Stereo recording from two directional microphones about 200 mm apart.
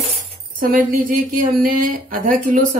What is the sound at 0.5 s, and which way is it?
Speech, 45° right (ahead or behind).